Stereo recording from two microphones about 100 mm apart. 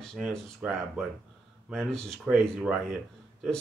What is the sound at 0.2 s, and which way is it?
Speech, 5° left (ahead or behind).